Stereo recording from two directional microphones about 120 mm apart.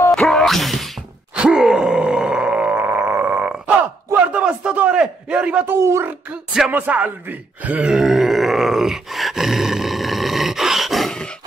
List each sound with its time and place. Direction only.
0.1 s groan: 5° left (ahead or behind)
5.8 s a man's voice: 25° right (ahead or behind)
7.9 s grunt: centre (ahead or behind)